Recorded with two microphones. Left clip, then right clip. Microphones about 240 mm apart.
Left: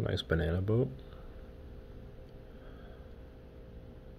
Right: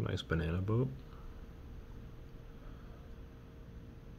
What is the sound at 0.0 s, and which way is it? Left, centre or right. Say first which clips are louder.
Speech: left 5 dB; centre.